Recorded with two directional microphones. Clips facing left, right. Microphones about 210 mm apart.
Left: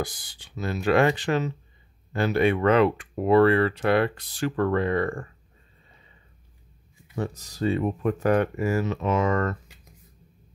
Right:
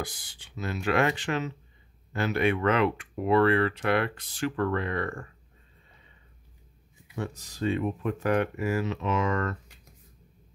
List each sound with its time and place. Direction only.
0.0 s speech: 35° left (ahead or behind)
7.2 s speech: 40° left (ahead or behind)